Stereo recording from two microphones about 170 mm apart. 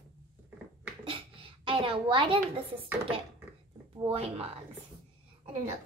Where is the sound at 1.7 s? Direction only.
30° right (ahead or behind).